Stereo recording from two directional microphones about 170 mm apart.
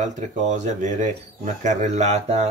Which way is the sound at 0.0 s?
45° right (ahead or behind).